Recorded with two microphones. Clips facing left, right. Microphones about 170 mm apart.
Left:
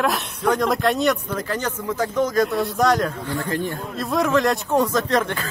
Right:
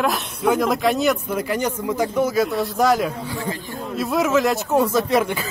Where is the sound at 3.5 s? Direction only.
60° left (ahead or behind).